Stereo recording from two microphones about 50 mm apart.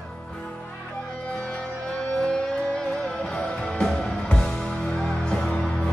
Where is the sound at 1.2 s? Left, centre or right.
Centre.